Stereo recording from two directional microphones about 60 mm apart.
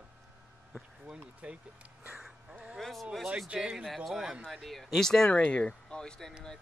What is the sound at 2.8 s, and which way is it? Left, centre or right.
Speech, centre.